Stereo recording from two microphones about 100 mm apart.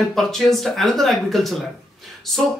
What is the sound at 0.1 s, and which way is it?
Speech, centre (ahead or behind).